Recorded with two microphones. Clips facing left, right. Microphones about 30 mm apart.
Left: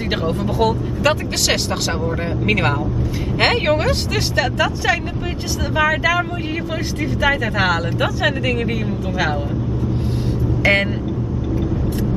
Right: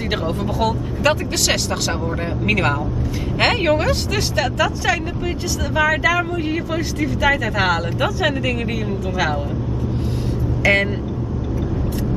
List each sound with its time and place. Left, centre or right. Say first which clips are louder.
0.1 s speech: left 2 dB; centre
10.6 s speech: even; centre